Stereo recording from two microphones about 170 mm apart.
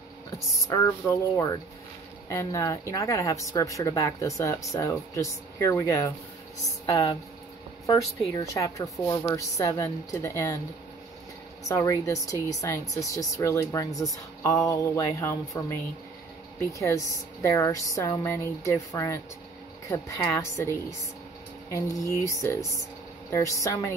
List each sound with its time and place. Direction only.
0.7 s speech: 20° left (ahead or behind)
11.6 s speech: 20° left (ahead or behind)
21.7 s a woman's voice: 20° left (ahead or behind)